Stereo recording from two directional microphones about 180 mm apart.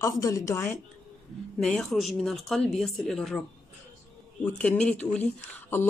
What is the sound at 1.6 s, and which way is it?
Speech, centre (ahead or behind).